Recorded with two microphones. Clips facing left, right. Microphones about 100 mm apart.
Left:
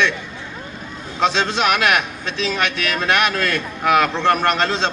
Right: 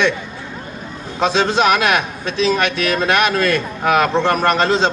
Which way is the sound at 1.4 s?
20° right (ahead or behind).